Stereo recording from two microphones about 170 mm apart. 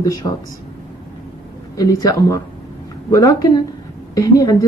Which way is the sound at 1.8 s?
20° left (ahead or behind).